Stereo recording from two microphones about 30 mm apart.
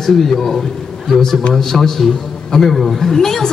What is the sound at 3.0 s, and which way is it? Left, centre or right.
Speech, centre.